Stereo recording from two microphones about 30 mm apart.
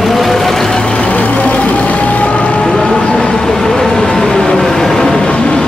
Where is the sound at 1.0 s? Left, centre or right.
Left.